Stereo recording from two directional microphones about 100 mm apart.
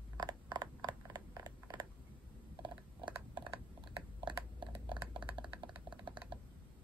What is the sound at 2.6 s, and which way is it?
Mechanisms, 50° right (ahead or behind).